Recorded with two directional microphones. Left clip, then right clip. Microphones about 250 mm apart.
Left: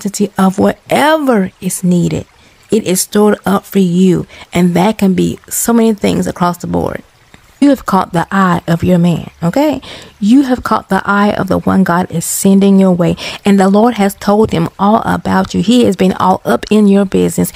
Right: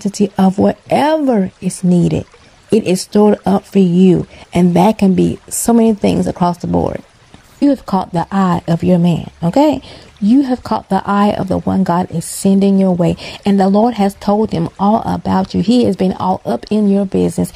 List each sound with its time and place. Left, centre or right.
0.0 s speech: centre